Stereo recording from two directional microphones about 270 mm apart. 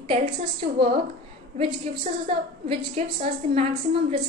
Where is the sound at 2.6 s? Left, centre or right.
Right.